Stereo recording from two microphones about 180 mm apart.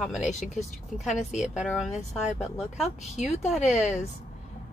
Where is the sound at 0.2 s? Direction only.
40° left (ahead or behind).